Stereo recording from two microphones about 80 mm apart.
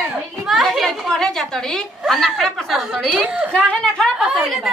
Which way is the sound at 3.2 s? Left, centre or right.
Centre.